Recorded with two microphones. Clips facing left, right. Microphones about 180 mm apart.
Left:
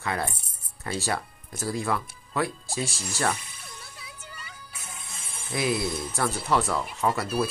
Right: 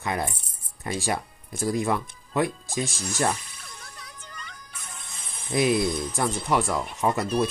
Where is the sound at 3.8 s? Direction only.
5° left (ahead or behind).